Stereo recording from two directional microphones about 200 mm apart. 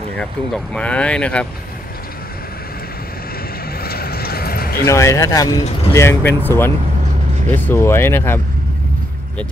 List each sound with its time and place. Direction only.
0.7 s speech: 5° left (ahead or behind)
3.8 s vehicle: 50° left (ahead or behind)
4.8 s speech: 15° left (ahead or behind)